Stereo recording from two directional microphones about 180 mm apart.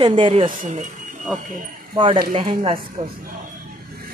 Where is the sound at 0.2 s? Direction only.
35° right (ahead or behind).